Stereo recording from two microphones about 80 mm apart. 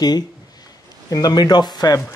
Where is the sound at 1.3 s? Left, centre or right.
Left.